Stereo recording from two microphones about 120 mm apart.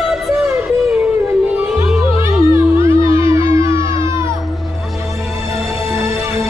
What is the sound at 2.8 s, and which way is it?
Music, 25° right (ahead or behind).